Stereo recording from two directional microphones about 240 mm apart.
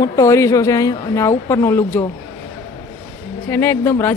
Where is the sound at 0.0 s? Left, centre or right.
Centre.